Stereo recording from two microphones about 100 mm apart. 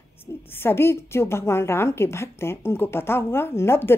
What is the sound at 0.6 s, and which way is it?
A woman's voice, 25° left (ahead or behind).